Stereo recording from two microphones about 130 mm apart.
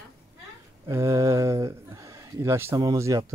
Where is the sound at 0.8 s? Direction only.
25° right (ahead or behind).